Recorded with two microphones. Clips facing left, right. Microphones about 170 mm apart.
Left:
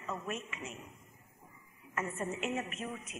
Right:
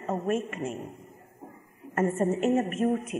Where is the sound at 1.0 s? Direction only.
50° right (ahead or behind).